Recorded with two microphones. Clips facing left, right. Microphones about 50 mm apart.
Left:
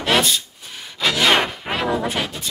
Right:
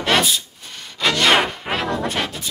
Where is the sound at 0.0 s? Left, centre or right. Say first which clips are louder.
Even; centre.